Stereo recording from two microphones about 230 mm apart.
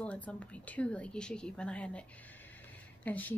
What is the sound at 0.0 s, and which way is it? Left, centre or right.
A woman's voice, centre.